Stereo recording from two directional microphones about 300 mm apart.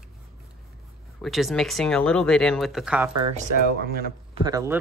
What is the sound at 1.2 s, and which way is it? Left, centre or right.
Speech, centre.